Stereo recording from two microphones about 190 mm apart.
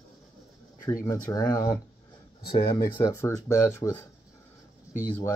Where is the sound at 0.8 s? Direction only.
15° left (ahead or behind).